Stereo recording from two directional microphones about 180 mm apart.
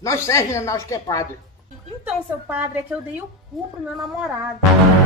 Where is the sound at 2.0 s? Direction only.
10° right (ahead or behind).